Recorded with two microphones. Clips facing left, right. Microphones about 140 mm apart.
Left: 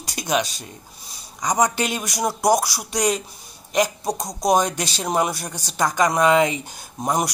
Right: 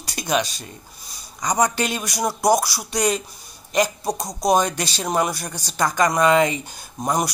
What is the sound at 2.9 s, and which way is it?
Speech, centre (ahead or behind).